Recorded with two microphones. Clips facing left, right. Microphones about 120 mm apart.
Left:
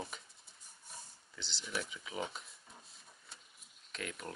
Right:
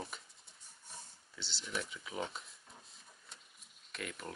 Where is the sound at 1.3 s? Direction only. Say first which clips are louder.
Even; centre (ahead or behind).